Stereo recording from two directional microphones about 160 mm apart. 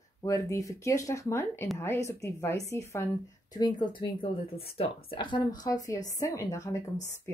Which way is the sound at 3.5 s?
25° left (ahead or behind).